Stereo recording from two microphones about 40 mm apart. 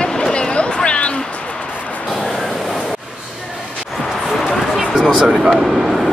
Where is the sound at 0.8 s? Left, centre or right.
Left.